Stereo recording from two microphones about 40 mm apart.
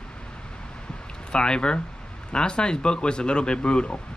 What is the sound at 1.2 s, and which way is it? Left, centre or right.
Speech, left.